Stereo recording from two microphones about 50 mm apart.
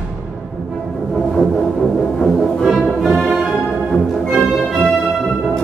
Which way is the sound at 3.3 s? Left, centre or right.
Centre.